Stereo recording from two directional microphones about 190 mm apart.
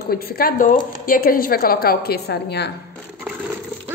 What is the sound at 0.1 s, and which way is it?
A woman's voice, 50° left (ahead or behind).